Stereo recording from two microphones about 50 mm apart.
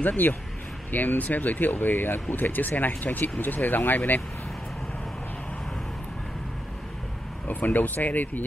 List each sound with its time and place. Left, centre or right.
0.0 s speech: left
7.4 s speech: left